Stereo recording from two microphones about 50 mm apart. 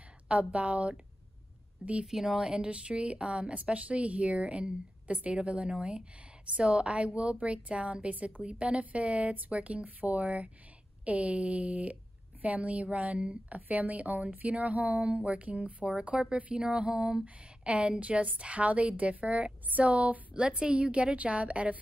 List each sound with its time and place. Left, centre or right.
0.3 s a woman's voice: right
2.0 s a woman's voice: centre; by 21.7 s right